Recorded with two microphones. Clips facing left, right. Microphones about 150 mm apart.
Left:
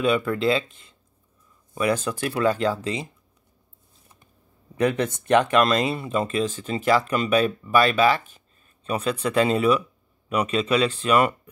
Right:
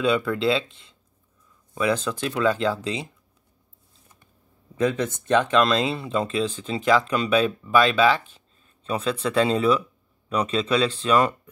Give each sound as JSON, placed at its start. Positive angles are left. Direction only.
{"t": 0.0, "sound": "speech", "side_deg": 5}
{"t": 5.5, "sound": "speech", "side_deg": 5}